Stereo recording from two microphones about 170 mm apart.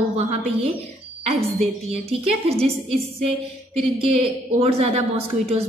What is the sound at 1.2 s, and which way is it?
A woman's voice, 35° right (ahead or behind).